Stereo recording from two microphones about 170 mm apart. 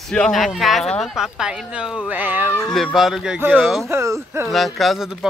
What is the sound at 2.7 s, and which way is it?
Speech, centre (ahead or behind).